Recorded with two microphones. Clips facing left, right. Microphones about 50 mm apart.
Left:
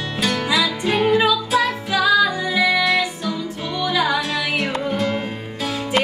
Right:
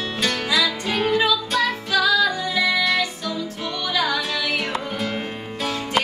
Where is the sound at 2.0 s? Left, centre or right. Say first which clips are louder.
Left 3 dB; centre.